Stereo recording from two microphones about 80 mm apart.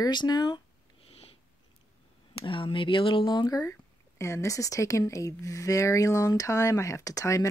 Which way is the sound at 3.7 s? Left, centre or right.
Left.